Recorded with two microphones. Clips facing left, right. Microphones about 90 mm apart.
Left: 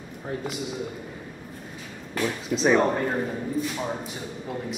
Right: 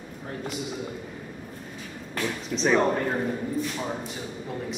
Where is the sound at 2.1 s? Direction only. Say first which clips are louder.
Left 3 dB; 5° left (ahead or behind).